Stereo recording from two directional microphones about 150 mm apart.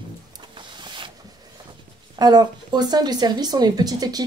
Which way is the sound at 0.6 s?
30° right (ahead or behind).